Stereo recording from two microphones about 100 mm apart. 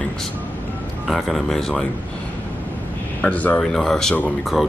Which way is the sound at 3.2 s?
15° left (ahead or behind).